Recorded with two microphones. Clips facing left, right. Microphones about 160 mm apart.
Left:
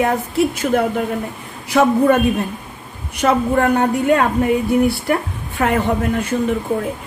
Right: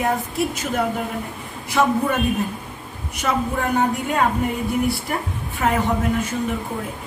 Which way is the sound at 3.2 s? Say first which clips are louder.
Left 7 dB; 65° left (ahead or behind).